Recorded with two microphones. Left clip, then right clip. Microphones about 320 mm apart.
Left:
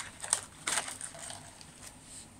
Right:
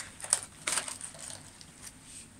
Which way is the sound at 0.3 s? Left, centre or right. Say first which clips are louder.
Right 1 dB; centre.